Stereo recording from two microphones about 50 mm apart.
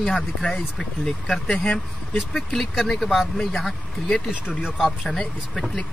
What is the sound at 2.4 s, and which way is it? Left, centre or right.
Speech, centre.